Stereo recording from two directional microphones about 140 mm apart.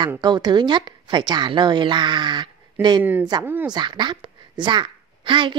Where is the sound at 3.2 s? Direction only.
25° right (ahead or behind).